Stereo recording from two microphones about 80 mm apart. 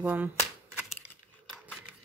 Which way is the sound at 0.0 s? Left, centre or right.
Right.